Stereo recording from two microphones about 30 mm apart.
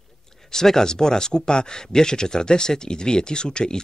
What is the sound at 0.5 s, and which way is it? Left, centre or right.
Speech, centre.